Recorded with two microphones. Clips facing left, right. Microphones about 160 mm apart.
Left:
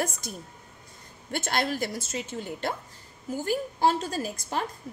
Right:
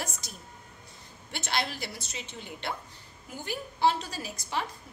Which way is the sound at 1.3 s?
50° left (ahead or behind).